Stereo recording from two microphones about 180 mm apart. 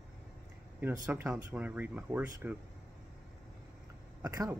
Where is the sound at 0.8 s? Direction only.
10° right (ahead or behind).